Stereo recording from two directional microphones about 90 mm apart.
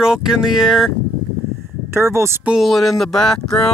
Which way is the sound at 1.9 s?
30° right (ahead or behind).